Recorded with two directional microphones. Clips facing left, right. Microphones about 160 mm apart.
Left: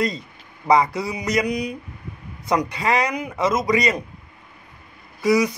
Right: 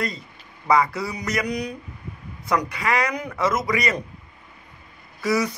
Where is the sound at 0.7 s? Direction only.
20° left (ahead or behind).